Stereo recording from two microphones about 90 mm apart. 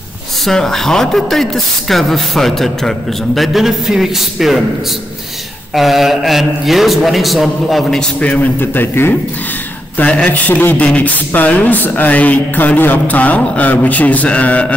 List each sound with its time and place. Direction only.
0.5 s speech: 5° left (ahead or behind)
5.8 s speech: centre (ahead or behind)
8.2 s speech: 15° left (ahead or behind)
9.9 s speech: 15° left (ahead or behind)